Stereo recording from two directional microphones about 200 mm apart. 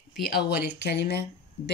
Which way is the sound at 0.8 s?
55° left (ahead or behind).